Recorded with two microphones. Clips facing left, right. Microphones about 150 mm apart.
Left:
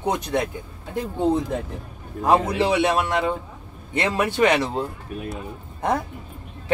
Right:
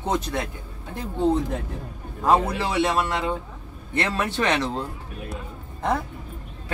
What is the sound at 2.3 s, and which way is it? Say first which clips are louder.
Speech: left 2 dB; 15° left (ahead or behind).